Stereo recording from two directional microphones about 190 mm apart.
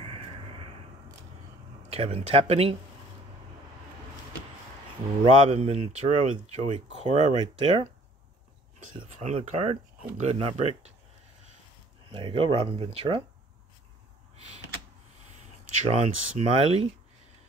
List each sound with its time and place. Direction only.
1.9 s speech: 30° right (ahead or behind)
5.2 s speech: 30° right (ahead or behind)
12.1 s speech: 25° right (ahead or behind)
15.9 s speech: 30° right (ahead or behind)